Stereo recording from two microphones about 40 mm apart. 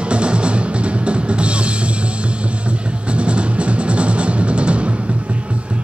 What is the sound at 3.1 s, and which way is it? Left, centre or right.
Music, right.